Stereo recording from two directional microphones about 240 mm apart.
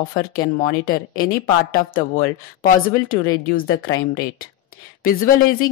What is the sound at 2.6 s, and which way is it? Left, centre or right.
Speech, left.